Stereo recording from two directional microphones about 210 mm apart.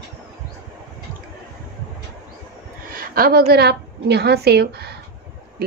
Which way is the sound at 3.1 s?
45° right (ahead or behind).